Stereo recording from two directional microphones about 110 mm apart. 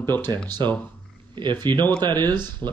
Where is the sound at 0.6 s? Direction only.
45° right (ahead or behind).